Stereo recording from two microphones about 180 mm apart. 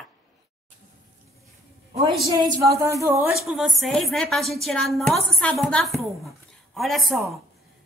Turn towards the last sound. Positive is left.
turn(degrees=0)  # may be behind; listen again after turning